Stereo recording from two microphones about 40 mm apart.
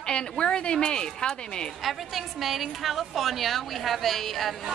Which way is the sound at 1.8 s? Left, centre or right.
Centre.